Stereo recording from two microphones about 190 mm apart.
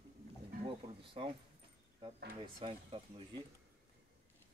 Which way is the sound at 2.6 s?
30° right (ahead or behind).